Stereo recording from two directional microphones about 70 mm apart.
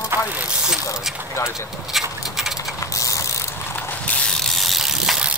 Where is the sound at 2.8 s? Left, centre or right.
Left.